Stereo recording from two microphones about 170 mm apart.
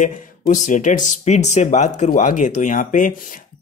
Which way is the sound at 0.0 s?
50° left (ahead or behind).